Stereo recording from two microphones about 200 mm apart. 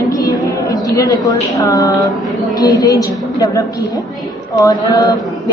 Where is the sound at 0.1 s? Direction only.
15° left (ahead or behind).